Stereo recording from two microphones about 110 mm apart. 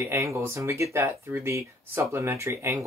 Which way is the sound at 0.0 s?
25° right (ahead or behind).